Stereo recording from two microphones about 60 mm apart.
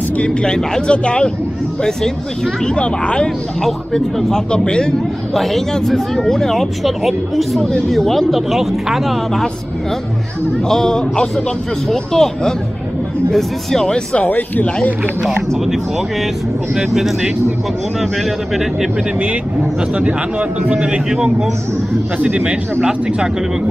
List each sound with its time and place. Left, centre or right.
0.2 s speech: centre
3.6 s speech: centre
5.3 s speech: centre
10.7 s speech: centre
15.2 s speech: centre
18.5 s speech: centre
19.8 s speech: centre
22.2 s speech: centre